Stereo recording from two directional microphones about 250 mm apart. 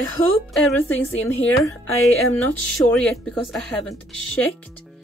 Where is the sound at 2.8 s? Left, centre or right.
Centre.